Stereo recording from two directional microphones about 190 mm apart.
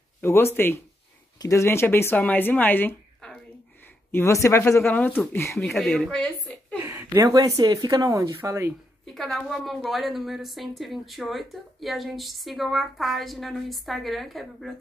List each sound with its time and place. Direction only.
0.2 s speech: 15° left (ahead or behind)
5.6 s a woman's voice: centre (ahead or behind)
6.8 s speech: 10° right (ahead or behind)
9.0 s a woman's voice: centre (ahead or behind)